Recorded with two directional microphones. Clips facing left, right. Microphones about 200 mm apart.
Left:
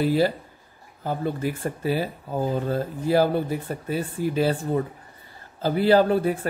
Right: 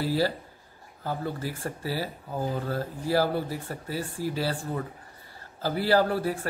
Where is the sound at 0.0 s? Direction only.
20° left (ahead or behind).